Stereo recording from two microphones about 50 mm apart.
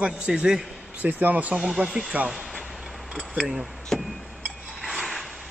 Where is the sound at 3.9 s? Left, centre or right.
Centre.